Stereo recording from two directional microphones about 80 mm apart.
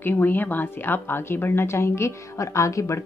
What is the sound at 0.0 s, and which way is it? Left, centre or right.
A woman's voice, left.